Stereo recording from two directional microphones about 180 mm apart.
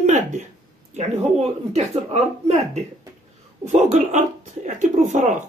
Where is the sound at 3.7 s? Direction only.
40° right (ahead or behind).